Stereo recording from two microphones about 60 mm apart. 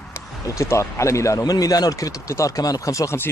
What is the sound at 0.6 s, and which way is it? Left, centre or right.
Speech, left.